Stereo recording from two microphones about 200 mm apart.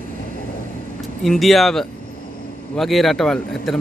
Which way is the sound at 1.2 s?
Centre (ahead or behind).